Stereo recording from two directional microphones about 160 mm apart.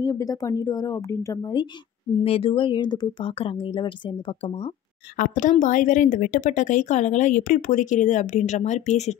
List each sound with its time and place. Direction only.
0.0 s speech: 25° left (ahead or behind)
2.2 s speech: 35° left (ahead or behind)
5.1 s speech: 55° left (ahead or behind)